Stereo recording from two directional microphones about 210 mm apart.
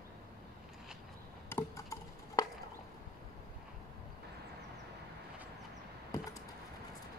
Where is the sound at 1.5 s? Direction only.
15° left (ahead or behind).